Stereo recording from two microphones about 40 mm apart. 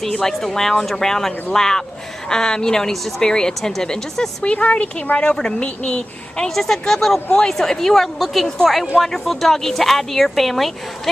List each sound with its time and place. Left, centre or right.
0.0 s speech: centre
4.4 s a woman's voice: left
6.5 s speech: centre